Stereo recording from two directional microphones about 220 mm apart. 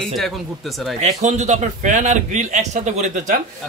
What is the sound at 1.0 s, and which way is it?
A man's voice, 30° right (ahead or behind).